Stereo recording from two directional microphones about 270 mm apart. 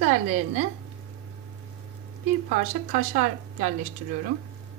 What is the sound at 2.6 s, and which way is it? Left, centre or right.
A woman's voice, right.